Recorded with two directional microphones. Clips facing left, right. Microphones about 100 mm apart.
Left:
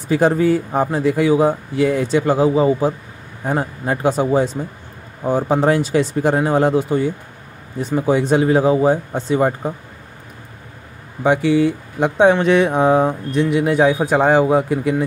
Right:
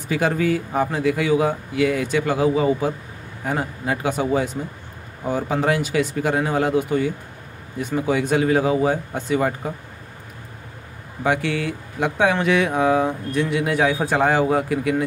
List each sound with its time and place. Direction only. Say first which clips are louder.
0.7 s speech: left 4 dB; 35° left (ahead or behind)
11.2 s speech: left 7 dB; 20° left (ahead or behind)